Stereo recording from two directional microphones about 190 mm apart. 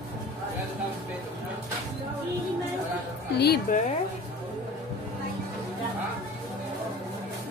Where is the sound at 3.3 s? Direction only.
55° left (ahead or behind).